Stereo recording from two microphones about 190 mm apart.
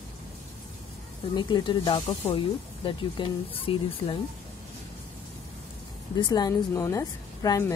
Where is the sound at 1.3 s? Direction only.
25° left (ahead or behind).